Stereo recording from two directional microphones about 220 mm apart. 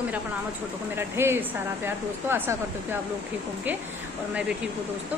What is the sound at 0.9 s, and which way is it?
Speech, 10° right (ahead or behind).